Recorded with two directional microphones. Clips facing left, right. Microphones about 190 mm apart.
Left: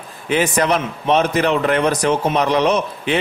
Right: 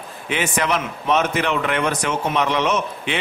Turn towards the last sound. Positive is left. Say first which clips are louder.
# left 4 dB
turn(degrees=35)  # may be behind; listen again after turning